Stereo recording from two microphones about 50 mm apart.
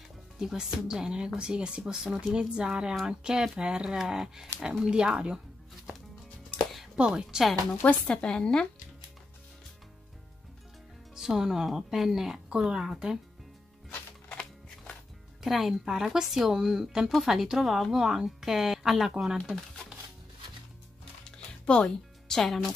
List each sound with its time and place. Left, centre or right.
0.4 s speech: centre
2.0 s speech: centre
2.3 s speech: centre
7.0 s speech: centre
7.8 s speech: centre
11.1 s speech: centre
15.4 s speech: centre
21.2 s music: centre